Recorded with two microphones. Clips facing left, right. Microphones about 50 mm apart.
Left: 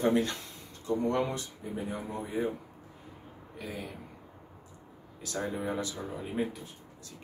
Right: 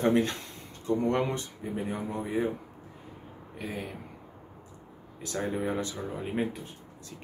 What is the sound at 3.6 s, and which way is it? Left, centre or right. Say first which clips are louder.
Speech: right 3 dB; right.